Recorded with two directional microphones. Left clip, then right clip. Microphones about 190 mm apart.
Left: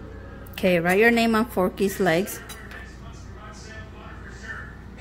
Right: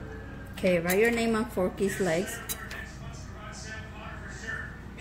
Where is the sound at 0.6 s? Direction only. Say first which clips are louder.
Left 5 dB; 55° left (ahead or behind).